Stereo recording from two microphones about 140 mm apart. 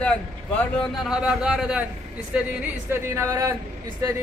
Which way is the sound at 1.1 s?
5° right (ahead or behind).